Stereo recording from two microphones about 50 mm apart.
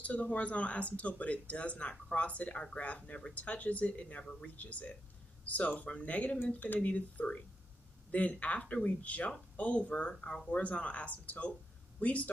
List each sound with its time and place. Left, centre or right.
0.0 s speech: left